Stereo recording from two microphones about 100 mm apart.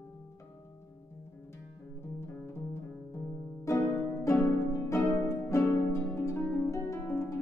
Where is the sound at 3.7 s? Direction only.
30° left (ahead or behind).